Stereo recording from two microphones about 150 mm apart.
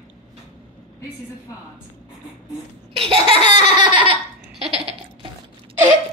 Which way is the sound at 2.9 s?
40° right (ahead or behind).